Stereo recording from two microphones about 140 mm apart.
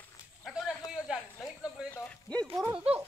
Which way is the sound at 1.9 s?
10° left (ahead or behind).